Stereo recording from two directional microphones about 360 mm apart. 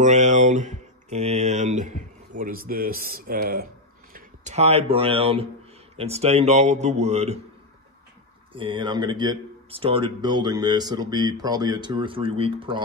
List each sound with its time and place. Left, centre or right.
0.0 s speech: centre
8.5 s speech: centre